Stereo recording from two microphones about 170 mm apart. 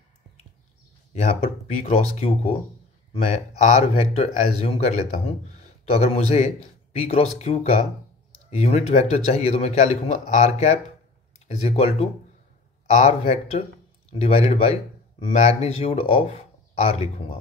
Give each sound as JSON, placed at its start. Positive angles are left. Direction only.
{"t": 1.2, "sound": "speech", "side_deg": 35}